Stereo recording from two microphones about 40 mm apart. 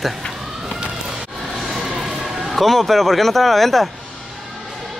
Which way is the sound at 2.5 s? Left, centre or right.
Centre.